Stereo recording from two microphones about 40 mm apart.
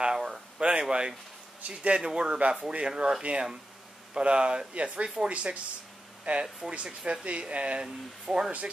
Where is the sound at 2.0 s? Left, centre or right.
Centre.